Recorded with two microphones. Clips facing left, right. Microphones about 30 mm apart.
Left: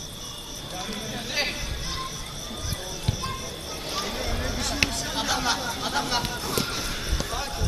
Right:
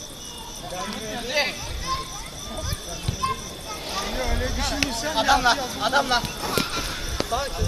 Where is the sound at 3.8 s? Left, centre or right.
Centre.